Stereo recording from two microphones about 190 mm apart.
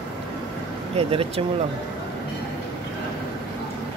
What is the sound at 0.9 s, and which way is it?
Speech, 30° right (ahead or behind).